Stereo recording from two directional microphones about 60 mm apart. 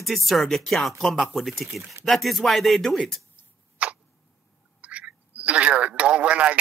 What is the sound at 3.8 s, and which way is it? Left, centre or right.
Tick, right.